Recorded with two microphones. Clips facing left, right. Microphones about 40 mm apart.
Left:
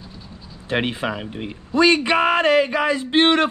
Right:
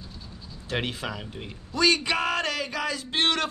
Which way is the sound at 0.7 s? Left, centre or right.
Left.